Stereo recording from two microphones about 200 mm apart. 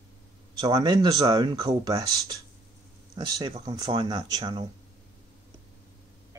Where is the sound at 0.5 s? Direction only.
20° right (ahead or behind).